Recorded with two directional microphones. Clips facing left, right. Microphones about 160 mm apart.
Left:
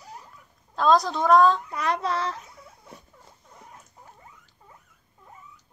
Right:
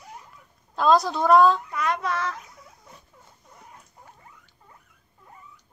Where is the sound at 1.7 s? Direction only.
35° left (ahead or behind).